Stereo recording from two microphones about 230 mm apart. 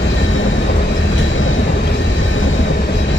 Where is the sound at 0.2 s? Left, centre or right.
Left.